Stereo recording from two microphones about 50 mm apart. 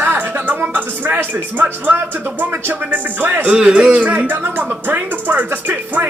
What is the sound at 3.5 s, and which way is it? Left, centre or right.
A woman's voice, right.